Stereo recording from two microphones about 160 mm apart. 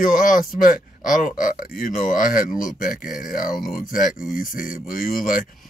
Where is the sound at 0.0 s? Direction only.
55° left (ahead or behind).